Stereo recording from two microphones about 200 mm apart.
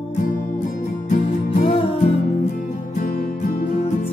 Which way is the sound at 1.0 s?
35° left (ahead or behind).